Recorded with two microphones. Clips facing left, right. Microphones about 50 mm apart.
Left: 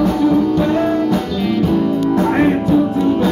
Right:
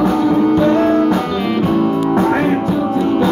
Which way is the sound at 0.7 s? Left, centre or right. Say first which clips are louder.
Right 3 dB; right.